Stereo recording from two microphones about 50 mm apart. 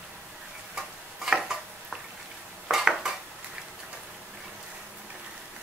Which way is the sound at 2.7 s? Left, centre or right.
Centre.